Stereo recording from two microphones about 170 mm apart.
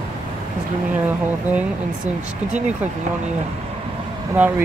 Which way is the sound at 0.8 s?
10° right (ahead or behind).